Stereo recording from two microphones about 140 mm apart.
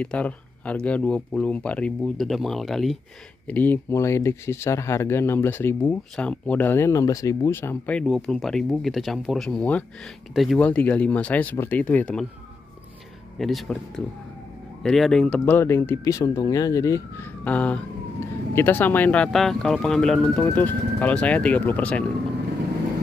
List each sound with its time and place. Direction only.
0.0 s speech: 10° left (ahead or behind)
3.4 s speech: 10° left (ahead or behind)
8.0 s speech: centre (ahead or behind)
10.6 s speech: 10° left (ahead or behind)
13.4 s speech: centre (ahead or behind)
15.4 s speech: 15° left (ahead or behind)
17.5 s speech: 10° left (ahead or behind)